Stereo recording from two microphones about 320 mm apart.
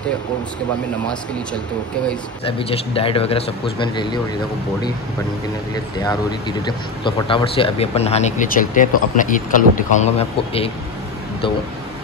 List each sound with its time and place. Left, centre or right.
2.4 s speech: centre
6.6 s speech: centre